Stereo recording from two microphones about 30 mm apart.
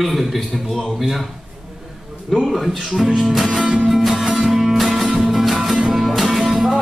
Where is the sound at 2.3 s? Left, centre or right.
Centre.